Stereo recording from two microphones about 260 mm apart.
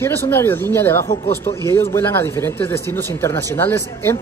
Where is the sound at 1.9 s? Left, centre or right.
Centre.